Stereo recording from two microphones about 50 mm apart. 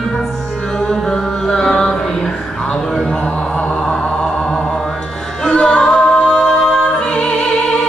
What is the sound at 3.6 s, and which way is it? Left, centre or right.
Music, centre.